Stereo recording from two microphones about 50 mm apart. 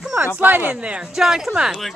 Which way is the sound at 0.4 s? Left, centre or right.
Right.